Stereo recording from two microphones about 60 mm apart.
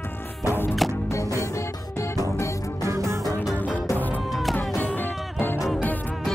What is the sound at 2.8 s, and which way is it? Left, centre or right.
Music, right.